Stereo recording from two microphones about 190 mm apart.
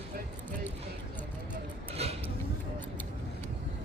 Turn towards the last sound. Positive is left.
turn(degrees=-35)  # may be behind; listen again after turning